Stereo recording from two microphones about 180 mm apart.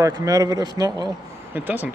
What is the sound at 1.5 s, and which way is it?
Speech, 10° right (ahead or behind).